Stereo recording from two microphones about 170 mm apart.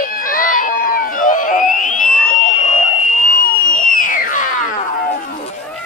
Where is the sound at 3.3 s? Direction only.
55° left (ahead or behind).